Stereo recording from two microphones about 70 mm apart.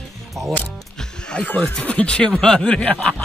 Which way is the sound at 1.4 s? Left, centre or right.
Left.